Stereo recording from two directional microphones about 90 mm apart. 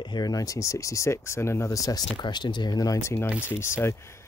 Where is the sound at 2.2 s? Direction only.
55° left (ahead or behind); by 3.9 s 30° left (ahead or behind).